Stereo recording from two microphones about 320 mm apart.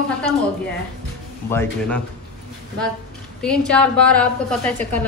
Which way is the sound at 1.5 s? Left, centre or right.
Centre.